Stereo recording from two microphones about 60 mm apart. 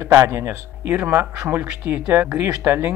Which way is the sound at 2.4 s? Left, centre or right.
Right.